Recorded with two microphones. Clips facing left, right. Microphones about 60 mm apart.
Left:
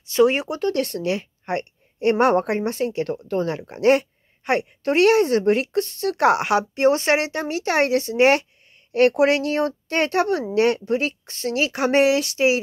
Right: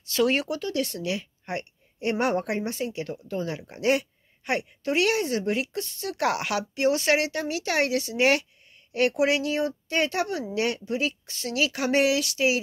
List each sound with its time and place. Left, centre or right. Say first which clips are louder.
0.0 s speech: left 6 dB; left
0.6 s a woman's voice: left 6 dB; left
6.2 s speech: left 8 dB; left
8.9 s a woman's voice: left 6 dB; left